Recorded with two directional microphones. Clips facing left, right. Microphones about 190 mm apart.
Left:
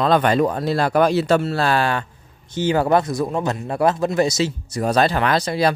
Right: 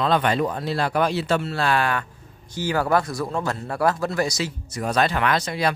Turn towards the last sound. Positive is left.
turn(degrees=35)  # may be behind; listen again after turning